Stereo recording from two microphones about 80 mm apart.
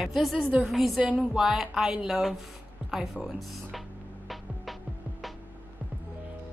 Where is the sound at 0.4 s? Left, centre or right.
Centre.